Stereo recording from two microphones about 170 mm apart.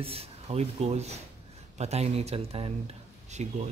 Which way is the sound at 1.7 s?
40° right (ahead or behind).